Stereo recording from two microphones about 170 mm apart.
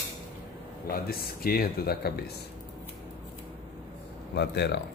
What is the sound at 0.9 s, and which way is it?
Speech, 60° left (ahead or behind).